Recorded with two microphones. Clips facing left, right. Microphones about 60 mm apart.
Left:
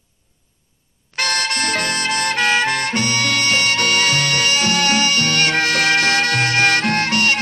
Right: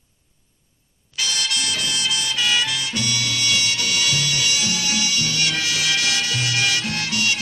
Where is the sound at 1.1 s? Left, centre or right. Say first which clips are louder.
Left 5 dB; left.